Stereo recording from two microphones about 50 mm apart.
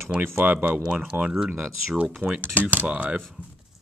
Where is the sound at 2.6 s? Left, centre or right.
Right.